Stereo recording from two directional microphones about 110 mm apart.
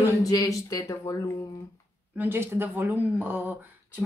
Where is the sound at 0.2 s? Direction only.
35° left (ahead or behind).